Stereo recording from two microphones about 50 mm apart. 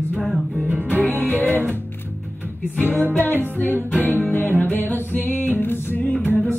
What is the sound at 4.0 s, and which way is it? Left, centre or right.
Music, right.